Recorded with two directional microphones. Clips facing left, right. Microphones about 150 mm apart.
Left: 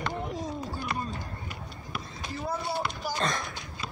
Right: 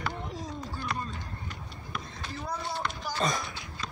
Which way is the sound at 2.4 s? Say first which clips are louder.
Left 3 dB; 10° left (ahead or behind).